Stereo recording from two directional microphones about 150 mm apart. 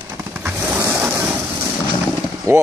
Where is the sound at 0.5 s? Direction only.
15° right (ahead or behind).